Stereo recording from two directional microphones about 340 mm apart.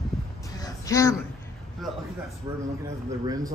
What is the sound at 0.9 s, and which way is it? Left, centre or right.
Speech, centre.